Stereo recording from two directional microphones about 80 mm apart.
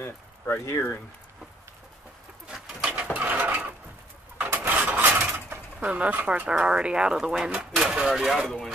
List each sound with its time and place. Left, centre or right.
0.0 s speech: left
2.4 s pigeon: centre
4.4 s engine: right
4.7 s a sound: right
5.3 s speech: right; by 8.7 s centre